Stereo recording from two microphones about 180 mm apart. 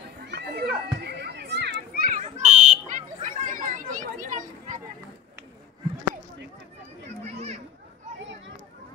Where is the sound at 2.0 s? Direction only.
40° right (ahead or behind).